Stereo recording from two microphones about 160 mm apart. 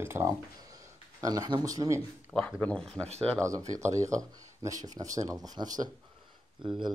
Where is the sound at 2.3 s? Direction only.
5° left (ahead or behind).